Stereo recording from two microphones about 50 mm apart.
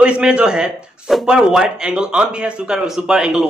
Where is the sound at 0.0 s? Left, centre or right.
Centre.